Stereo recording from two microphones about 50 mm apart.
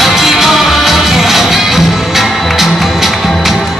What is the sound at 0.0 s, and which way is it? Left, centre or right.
Music, centre.